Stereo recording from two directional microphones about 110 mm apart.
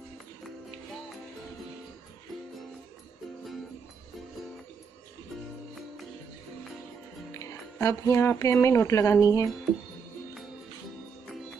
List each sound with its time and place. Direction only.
7.3 s speech: 30° left (ahead or behind)